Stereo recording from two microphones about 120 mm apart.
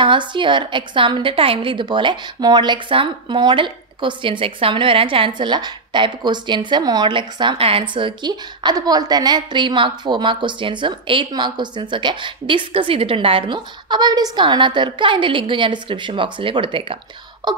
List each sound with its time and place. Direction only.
0.0 s a woman's voice: 40° right (ahead or behind)